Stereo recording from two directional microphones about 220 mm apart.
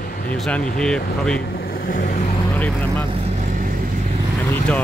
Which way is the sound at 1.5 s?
40° left (ahead or behind).